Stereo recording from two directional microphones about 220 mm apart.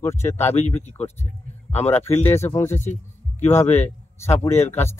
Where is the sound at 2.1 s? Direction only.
30° left (ahead or behind).